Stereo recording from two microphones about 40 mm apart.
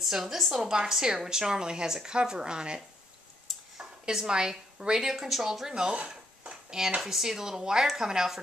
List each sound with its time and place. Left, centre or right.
0.0 s a woman's voice: centre
4.0 s a woman's voice: centre
5.1 s a woman's voice: centre
7.0 s a woman's voice: centre